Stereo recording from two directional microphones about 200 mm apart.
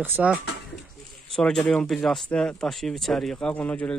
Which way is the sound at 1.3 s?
5° left (ahead or behind).